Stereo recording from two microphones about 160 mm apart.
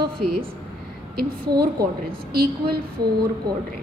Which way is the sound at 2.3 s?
70° right (ahead or behind).